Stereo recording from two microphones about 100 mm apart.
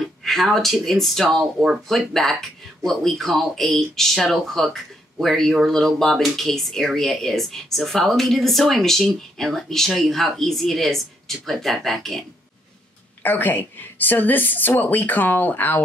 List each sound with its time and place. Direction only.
0.2 s speech: centre (ahead or behind)
13.2 s a woman's voice: 15° left (ahead or behind)